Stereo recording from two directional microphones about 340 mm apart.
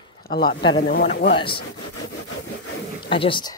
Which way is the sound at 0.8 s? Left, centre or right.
Left.